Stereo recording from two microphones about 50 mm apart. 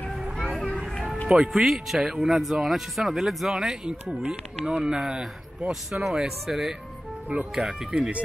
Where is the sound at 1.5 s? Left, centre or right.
Centre.